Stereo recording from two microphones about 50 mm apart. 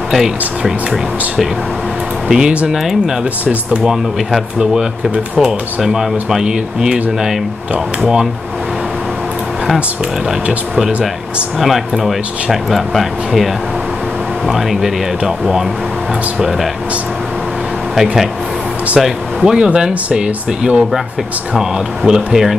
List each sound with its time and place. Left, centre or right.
0.1 s speech: centre
2.2 s speech: centre
5.1 s speech: right
5.8 s speech: centre
10.9 s speech: right
12.0 s speech: centre
14.5 s speech: centre
17.9 s speech: centre